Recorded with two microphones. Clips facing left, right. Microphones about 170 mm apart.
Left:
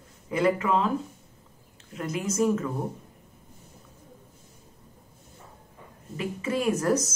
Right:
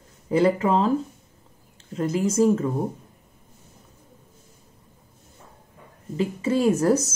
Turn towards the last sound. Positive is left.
turn(degrees=-30)  # may be behind; listen again after turning